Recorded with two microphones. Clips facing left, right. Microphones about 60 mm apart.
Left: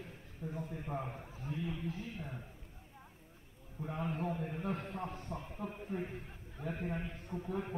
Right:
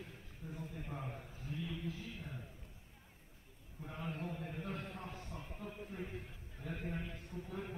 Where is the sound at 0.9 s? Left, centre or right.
Left.